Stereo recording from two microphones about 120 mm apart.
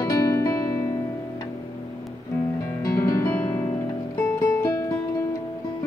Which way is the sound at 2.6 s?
30° left (ahead or behind).